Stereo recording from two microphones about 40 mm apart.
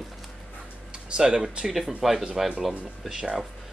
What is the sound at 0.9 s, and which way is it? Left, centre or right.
Speech, right.